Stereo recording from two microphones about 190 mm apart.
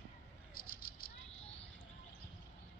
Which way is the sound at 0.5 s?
50° left (ahead or behind).